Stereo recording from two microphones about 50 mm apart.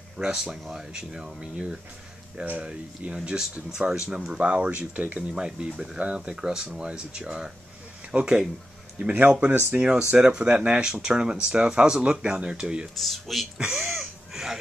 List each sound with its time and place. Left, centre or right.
0.2 s speech: centre; by 5.2 s right
5.3 s speech: centre
6.3 s speech: centre
9.5 s speech: right
9.8 s speech: centre
10.5 s speech: right
10.8 s speech: centre
12.9 s speech: centre
13.6 s speech: centre
14.3 s a sound: centre